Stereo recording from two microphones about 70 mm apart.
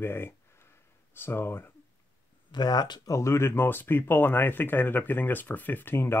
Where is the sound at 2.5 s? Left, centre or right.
Left.